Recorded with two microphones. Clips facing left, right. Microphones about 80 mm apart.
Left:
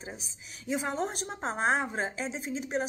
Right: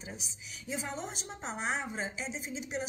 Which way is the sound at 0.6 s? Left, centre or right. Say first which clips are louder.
Left 7 dB; left.